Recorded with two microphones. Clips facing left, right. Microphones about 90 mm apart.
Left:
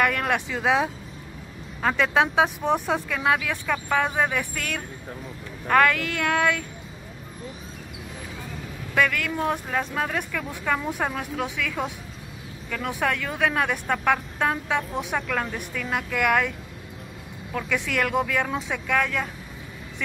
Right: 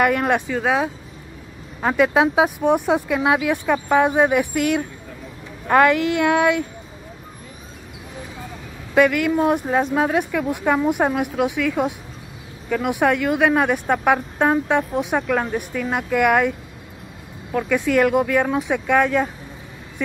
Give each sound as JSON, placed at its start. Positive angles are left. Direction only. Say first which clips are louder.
{"t": 0.0, "sound": "speech", "louder": "right 5 dB", "side_deg": -10}
{"t": 8.9, "sound": "speech", "louder": "right 8 dB", "side_deg": -15}